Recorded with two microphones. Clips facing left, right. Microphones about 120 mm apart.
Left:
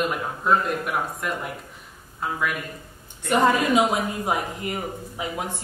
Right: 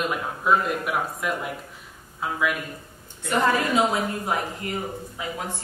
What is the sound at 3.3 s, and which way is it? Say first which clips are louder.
Speech: left 3 dB; 15° left (ahead or behind).